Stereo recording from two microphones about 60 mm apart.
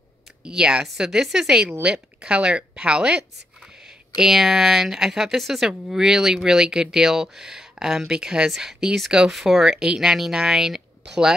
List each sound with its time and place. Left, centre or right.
0.4 s speech: centre
1.7 s speech: right